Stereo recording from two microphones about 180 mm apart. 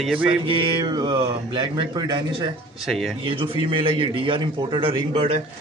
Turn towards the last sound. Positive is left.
turn(degrees=-35)  # may be behind; listen again after turning